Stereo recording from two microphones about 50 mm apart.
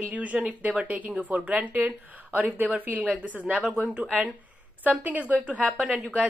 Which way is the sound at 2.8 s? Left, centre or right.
Right.